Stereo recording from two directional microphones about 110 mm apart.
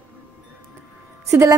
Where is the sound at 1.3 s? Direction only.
25° right (ahead or behind).